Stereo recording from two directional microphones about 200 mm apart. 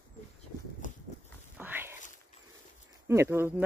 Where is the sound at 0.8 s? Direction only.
40° left (ahead or behind).